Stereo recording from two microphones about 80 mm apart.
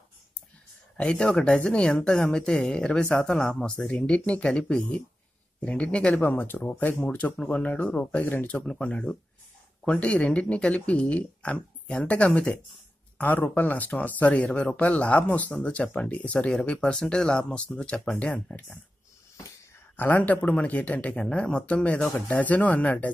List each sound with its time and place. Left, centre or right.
0.9 s speech: centre
19.3 s wheeze: left
20.0 s speech: left